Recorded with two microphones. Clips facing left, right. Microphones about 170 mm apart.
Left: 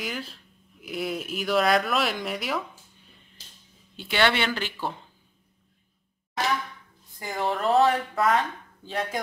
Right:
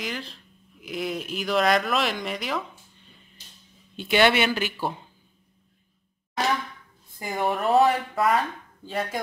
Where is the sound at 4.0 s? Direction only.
15° right (ahead or behind).